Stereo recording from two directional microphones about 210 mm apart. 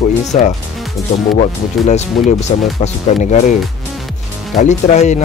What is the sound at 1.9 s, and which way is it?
Speech, 35° left (ahead or behind).